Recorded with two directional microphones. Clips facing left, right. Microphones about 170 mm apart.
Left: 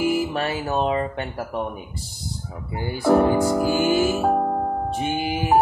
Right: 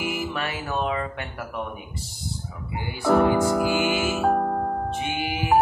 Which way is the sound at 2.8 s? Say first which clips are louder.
Left 2 dB; 35° left (ahead or behind).